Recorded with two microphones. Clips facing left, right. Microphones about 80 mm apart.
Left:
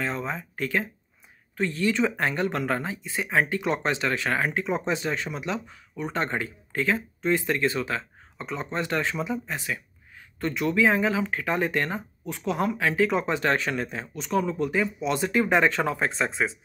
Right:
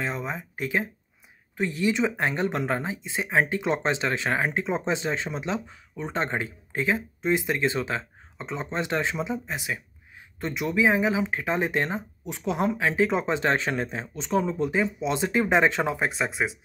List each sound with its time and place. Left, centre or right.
0.0 s speech: centre